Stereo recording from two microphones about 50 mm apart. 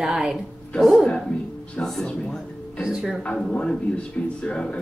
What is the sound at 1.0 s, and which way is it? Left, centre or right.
Speech, centre.